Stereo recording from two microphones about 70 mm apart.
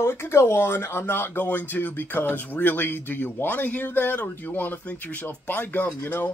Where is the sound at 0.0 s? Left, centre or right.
Left.